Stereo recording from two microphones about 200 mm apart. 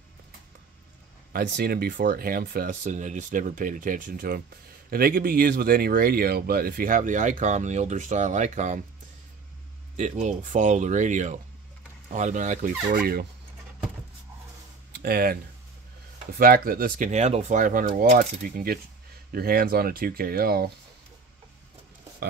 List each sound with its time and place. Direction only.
1.3 s speech: 50° right (ahead or behind)
9.9 s speech: 35° right (ahead or behind)
14.9 s a sound: 50° right (ahead or behind)
16.3 s speech: 45° right (ahead or behind)